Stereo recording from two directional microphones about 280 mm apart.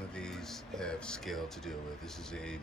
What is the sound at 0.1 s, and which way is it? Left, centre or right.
Speech, centre.